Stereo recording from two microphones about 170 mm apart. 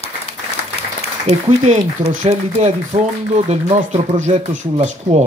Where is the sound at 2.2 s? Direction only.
45° right (ahead or behind).